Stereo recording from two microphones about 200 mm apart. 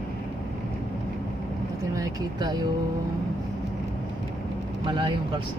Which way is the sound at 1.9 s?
20° right (ahead or behind).